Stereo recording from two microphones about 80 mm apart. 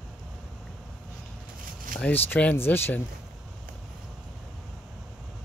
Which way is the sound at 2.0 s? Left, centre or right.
Left.